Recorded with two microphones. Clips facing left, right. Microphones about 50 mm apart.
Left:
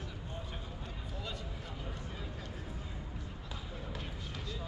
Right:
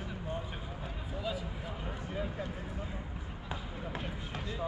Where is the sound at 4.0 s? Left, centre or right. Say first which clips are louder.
Right 4 dB; right.